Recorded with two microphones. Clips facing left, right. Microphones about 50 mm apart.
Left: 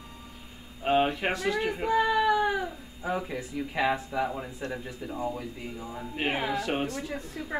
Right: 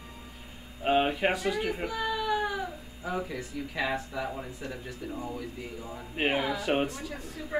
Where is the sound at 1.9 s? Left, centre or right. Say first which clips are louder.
Left 11 dB; left.